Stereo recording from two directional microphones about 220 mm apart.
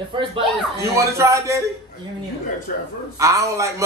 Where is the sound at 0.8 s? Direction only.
15° right (ahead or behind).